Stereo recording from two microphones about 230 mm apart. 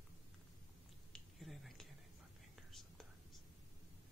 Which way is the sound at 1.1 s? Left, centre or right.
Centre.